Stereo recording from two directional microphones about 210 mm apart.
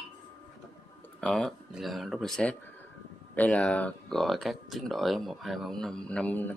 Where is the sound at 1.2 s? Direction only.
5° left (ahead or behind).